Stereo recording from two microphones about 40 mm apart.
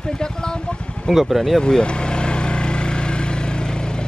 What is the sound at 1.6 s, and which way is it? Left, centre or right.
Vehicle, left.